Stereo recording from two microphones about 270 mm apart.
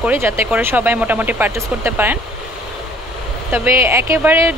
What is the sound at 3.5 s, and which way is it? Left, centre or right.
Speech, centre.